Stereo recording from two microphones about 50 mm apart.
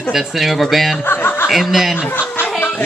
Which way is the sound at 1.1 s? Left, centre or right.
Left.